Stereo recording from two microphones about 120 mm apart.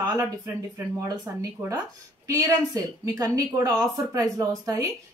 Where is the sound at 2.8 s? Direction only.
30° right (ahead or behind).